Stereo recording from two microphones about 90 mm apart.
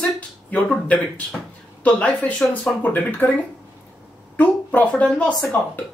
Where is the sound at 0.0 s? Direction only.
15° left (ahead or behind).